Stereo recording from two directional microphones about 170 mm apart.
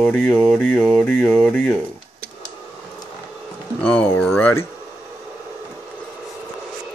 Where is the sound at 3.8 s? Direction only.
10° left (ahead or behind).